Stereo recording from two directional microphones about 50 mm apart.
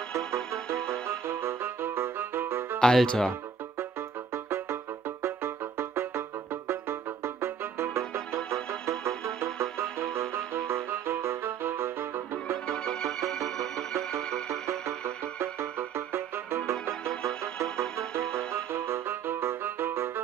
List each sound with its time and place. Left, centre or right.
1.0 s music: right
2.8 s speech: centre
5.2 s music: right
12.6 s music: centre
15.3 s music: right
18.3 s music: right